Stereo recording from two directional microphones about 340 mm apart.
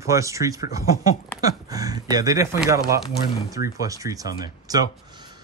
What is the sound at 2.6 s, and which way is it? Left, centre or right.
Speech, centre.